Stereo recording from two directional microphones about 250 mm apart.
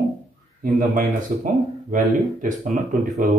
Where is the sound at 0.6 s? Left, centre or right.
Right.